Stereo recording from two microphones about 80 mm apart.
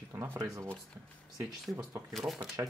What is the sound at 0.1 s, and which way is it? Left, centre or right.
Speech, right.